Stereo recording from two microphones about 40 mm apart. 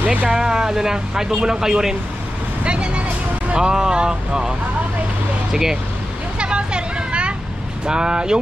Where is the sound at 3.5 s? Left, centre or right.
Centre.